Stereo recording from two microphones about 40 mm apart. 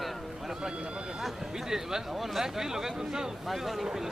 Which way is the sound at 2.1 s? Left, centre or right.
Centre.